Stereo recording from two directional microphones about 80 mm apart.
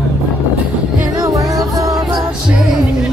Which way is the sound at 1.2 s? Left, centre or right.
Right.